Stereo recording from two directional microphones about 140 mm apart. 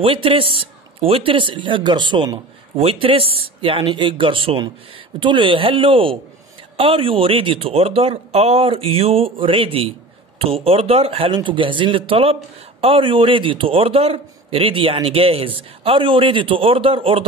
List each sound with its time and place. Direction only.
0.0 s a man's voice: 40° right (ahead or behind)